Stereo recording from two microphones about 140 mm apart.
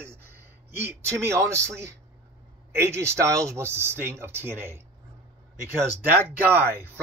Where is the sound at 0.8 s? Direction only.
15° right (ahead or behind).